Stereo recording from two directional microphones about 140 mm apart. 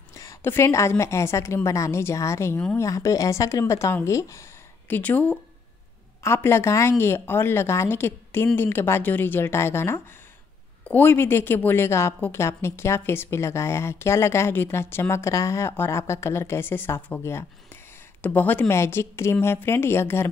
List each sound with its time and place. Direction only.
0.1 s a woman's voice: 20° left (ahead or behind)